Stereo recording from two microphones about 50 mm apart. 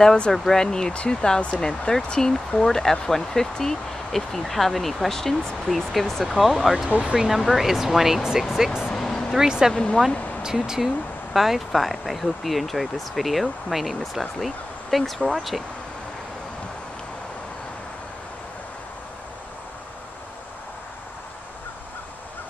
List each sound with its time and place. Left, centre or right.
0.0 s speech: centre
6.9 s speech: right
7.2 s speech: centre
8.9 s vehicle: centre
9.3 s speech: centre